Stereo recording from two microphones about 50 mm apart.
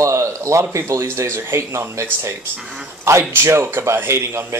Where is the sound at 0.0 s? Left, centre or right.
Right.